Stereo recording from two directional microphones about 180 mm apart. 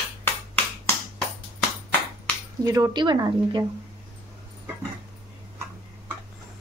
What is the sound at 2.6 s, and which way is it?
Speech, 20° right (ahead or behind).